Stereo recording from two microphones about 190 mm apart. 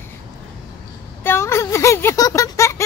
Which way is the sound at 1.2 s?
15° left (ahead or behind).